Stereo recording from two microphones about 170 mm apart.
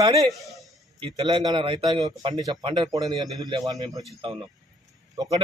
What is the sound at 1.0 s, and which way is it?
A man's voice, 25° right (ahead or behind).